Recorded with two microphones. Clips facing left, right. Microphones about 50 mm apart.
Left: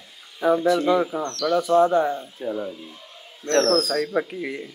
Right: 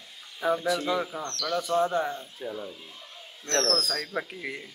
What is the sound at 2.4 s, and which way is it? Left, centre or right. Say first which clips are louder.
Speech: left 8 dB; left.